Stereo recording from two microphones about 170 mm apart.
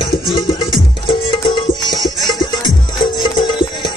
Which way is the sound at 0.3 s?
30° left (ahead or behind).